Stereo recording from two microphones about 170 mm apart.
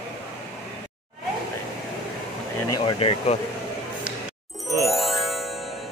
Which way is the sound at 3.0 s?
35° left (ahead or behind).